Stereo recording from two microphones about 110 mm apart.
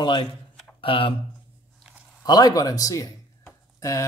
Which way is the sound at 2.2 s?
35° left (ahead or behind).